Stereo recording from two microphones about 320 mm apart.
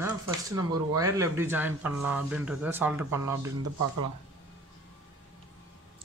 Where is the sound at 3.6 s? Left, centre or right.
Right.